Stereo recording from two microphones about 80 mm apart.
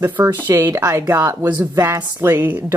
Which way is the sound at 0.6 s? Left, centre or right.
Right.